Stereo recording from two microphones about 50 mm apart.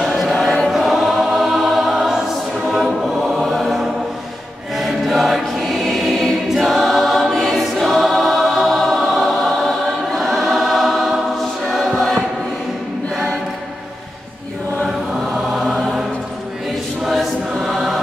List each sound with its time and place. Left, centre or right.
0.0 s choir: centre
15.3 s choir: centre
17.0 s choir: centre